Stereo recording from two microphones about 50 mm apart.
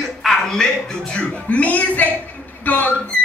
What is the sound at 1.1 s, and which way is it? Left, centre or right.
A man's voice, left.